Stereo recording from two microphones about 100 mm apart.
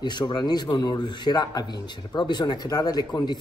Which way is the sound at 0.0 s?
45° left (ahead or behind).